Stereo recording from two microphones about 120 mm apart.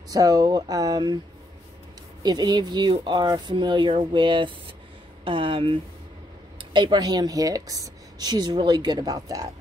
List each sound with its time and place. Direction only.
0.1 s speech: 30° right (ahead or behind)
2.2 s speech: 35° right (ahead or behind)